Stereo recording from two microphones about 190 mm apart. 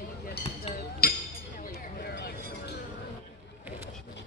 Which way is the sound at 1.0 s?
50° left (ahead or behind).